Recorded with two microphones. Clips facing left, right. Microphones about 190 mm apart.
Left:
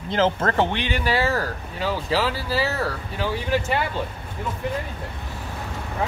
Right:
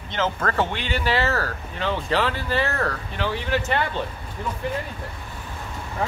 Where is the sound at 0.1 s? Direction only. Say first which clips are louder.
Left 4 dB; 30° left (ahead or behind); by 4.0 s 10° left (ahead or behind).